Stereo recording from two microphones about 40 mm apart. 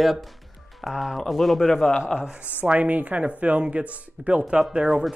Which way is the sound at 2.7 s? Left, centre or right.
Right.